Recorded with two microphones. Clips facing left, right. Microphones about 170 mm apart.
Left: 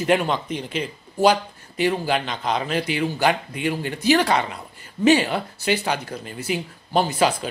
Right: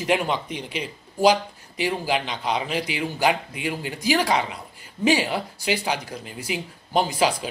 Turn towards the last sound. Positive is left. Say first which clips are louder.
# left 2 dB
turn(degrees=-10)  # may be behind; listen again after turning